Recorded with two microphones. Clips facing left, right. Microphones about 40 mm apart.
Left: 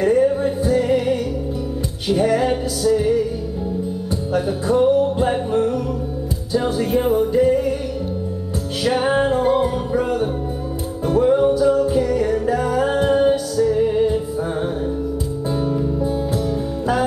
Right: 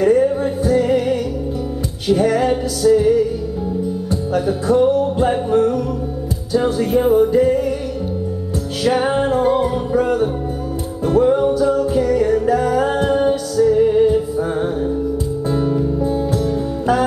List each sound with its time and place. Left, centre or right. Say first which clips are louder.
0.0 s music: right 2 dB; centre
4.5 s music: right 2 dB; centre
8.8 s music: right 1 dB; centre